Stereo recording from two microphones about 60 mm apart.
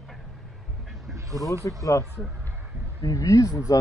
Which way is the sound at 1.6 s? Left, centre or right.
Left.